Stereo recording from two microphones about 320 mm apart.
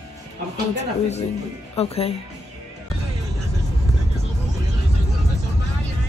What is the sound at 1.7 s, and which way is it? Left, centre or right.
Speech, centre.